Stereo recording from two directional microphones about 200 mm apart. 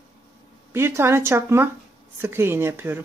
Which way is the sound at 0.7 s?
10° right (ahead or behind).